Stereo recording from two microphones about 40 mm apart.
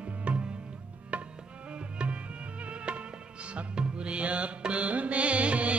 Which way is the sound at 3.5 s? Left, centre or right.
Right.